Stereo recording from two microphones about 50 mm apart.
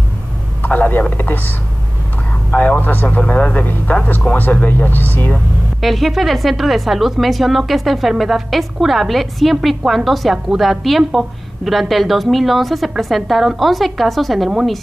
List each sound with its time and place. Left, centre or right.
0.6 s a sound: left
1.1 s speech: left
2.5 s speech: left
3.2 s speech: left
4.4 s speech: left
5.8 s a woman's voice: centre